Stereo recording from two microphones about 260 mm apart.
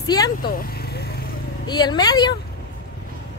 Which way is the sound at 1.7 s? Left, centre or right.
Centre.